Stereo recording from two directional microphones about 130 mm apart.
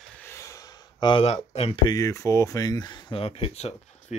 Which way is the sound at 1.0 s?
40° left (ahead or behind).